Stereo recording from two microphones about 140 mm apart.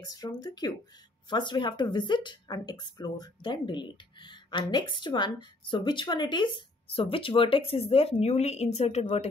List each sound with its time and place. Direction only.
0.0 s speech: 25° left (ahead or behind); by 9.0 s 50° left (ahead or behind)